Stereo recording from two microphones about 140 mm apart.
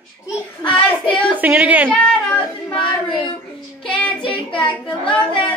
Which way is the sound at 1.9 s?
10° left (ahead or behind).